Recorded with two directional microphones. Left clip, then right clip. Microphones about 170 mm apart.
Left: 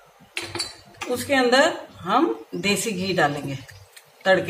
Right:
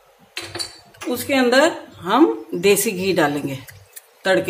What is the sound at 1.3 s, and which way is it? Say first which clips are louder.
A woman's voice: right 2 dB; 65° right (ahead or behind).